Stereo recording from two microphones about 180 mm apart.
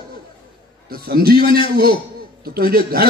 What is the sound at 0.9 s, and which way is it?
Speech, 55° right (ahead or behind).